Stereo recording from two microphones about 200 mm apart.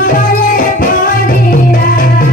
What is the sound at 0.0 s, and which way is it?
Music, 45° left (ahead or behind).